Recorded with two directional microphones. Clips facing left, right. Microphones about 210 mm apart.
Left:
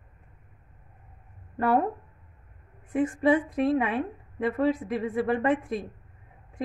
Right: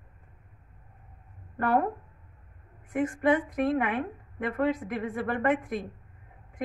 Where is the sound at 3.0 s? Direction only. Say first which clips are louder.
Left 2 dB; 25° left (ahead or behind).